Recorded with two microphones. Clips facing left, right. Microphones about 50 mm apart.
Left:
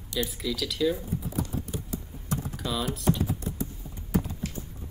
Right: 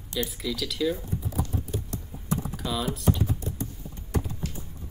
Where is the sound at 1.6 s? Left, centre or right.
Centre.